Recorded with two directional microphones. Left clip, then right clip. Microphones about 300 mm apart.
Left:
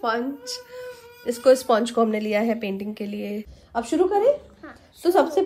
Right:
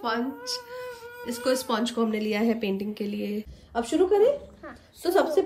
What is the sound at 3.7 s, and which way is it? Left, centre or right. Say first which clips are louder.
Speech: left 1 dB; left.